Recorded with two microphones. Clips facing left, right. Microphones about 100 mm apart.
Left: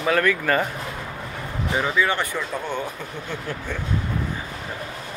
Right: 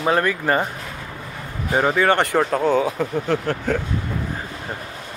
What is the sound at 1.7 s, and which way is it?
Speech, 45° right (ahead or behind).